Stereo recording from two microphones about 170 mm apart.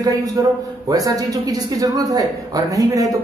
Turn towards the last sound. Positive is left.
turn(degrees=-20)  # may be behind; listen again after turning